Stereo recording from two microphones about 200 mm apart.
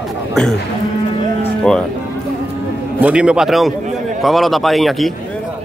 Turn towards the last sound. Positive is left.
turn(degrees=0)  # may be behind; listen again after turning